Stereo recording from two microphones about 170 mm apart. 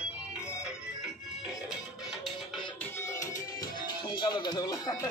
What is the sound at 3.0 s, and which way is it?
Music, 20° left (ahead or behind).